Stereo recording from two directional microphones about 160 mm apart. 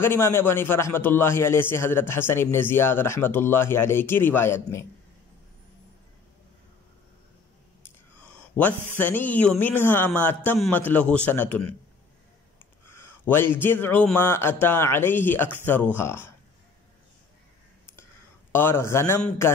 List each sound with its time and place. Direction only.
0.0 s a man's voice: 15° left (ahead or behind)
8.5 s a man's voice: 10° left (ahead or behind)
12.8 s a man's voice: 15° left (ahead or behind)
18.5 s a man's voice: 15° left (ahead or behind)